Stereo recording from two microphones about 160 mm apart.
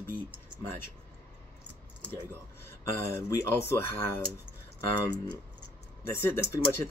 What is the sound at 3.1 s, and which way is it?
Speech, 15° left (ahead or behind).